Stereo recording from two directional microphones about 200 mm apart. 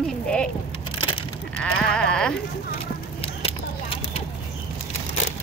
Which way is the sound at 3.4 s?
30° left (ahead or behind).